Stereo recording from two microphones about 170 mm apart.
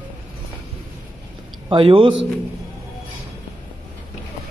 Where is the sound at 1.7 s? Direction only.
30° right (ahead or behind).